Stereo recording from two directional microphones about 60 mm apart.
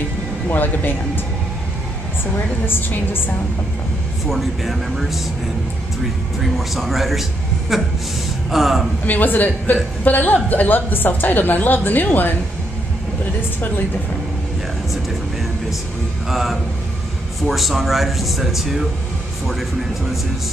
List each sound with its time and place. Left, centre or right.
0.5 s a woman's voice: left
2.6 s a woman's voice: left
4.3 s a man's voice: centre
6.4 s a man's voice: centre
9.0 s a man's voice: left
16.3 s a man's voice: centre